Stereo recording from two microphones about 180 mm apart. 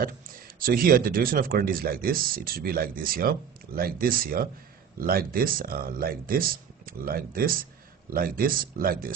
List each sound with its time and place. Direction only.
0.0 s speech: 50° right (ahead or behind)